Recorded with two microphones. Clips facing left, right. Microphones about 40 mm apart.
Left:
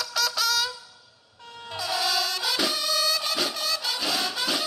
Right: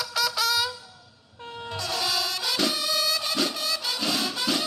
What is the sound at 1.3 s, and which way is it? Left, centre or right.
Vehicle, right.